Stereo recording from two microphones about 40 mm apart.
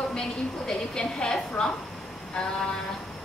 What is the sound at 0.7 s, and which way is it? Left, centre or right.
Speech, centre.